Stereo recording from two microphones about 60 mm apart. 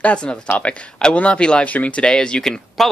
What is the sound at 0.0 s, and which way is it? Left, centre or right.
Speech, centre.